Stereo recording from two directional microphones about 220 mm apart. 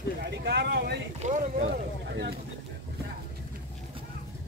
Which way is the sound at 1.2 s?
35° right (ahead or behind).